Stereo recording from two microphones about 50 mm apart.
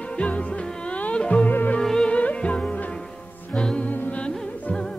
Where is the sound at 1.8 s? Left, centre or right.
Centre.